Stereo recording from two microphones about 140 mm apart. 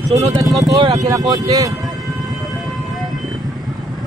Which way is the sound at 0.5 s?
Centre (ahead or behind).